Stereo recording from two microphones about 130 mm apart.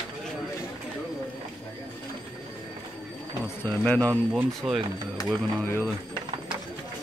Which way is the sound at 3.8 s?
10° left (ahead or behind).